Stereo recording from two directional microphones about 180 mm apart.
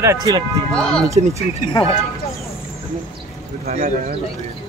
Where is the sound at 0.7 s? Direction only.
5° left (ahead or behind).